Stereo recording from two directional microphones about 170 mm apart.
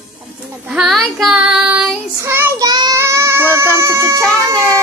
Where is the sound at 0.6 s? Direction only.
5° right (ahead or behind).